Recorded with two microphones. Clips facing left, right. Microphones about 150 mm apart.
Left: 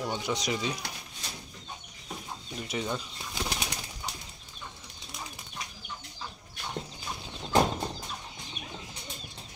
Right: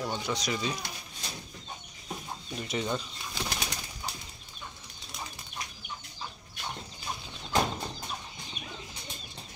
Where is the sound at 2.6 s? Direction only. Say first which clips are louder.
Right 1 dB; 5° left (ahead or behind).